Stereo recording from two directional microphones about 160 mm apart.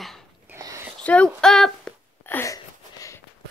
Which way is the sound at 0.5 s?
20° right (ahead or behind).